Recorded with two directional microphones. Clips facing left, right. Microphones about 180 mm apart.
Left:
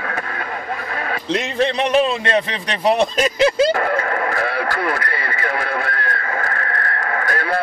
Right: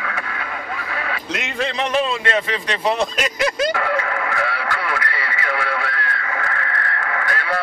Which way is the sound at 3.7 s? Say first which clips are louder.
Left 2 dB; 45° left (ahead or behind).